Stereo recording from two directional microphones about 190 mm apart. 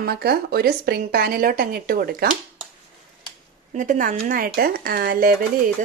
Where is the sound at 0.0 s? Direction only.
55° right (ahead or behind).